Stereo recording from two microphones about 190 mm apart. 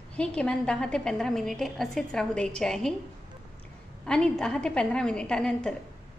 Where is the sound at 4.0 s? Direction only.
5° left (ahead or behind).